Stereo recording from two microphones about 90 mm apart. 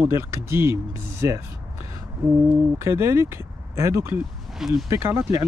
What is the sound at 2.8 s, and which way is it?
Speech, 30° right (ahead or behind).